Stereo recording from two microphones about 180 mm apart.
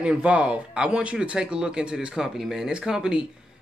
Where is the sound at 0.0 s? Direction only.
5° right (ahead or behind).